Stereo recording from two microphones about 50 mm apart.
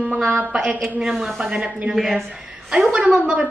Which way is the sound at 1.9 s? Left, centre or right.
Centre.